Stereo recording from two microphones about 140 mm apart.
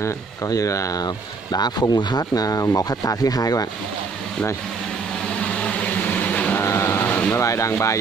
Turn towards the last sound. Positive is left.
turn(degrees=20)  # may be behind; listen again after turning